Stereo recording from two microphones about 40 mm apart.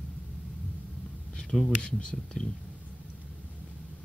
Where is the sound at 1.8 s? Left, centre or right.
Left.